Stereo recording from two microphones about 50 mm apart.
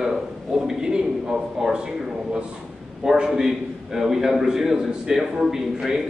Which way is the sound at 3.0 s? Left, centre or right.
Centre.